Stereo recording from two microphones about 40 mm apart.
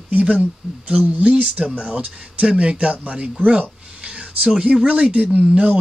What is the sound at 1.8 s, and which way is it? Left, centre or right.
Speech, right.